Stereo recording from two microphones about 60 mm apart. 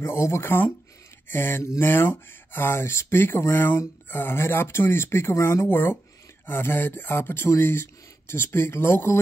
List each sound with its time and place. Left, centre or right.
0.0 s speech: left